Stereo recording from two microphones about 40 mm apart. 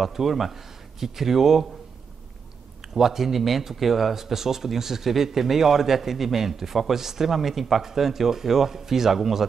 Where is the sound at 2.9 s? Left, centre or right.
Centre.